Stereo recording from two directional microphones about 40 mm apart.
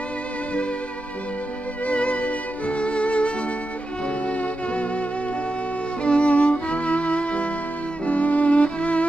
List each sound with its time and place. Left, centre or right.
1.9 s music: left
6.0 s violin: left
8.0 s music: left